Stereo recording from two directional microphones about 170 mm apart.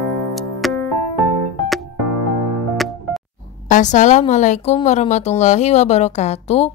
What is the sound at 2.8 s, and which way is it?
Music, centre (ahead or behind).